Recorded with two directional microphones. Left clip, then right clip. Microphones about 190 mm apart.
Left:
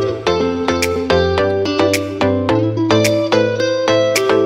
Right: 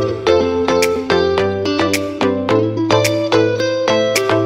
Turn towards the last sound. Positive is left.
turn(degrees=0)  # may be behind; listen again after turning